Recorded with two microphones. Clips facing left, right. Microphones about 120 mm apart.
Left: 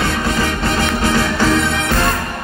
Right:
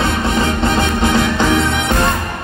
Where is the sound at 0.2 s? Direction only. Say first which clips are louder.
Right 2 dB; 25° right (ahead or behind).